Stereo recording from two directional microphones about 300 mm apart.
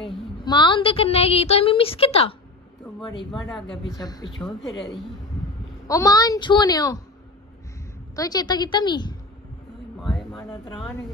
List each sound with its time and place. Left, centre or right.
0.5 s a woman's voice: centre
3.2 s speech: centre
4.0 s a woman's voice: centre
4.7 s speech: centre
5.9 s a woman's voice: centre
8.2 s a woman's voice: centre
10.3 s speech: centre